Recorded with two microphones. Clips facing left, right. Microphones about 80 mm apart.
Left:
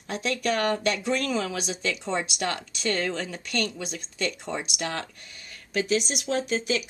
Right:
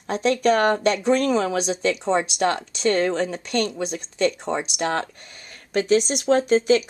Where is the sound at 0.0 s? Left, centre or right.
Right.